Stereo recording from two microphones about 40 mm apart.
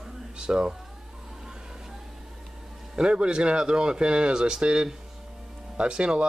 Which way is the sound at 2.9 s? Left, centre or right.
Right.